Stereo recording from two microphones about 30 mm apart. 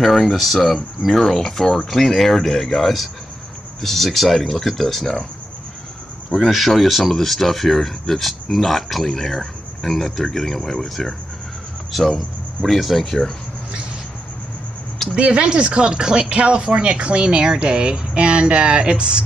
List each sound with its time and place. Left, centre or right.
0.0 s speech: centre
6.3 s speech: centre
12.6 s speech: centre
13.0 s speech: centre
15.1 s speech: right
16.3 s speech: right